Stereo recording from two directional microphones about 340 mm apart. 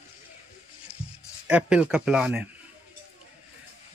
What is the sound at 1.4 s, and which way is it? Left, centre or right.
Speech, centre.